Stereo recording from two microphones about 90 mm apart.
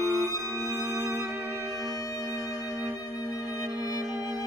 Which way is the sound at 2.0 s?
40° left (ahead or behind).